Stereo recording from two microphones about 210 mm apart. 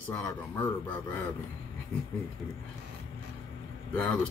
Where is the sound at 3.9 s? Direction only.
5° left (ahead or behind).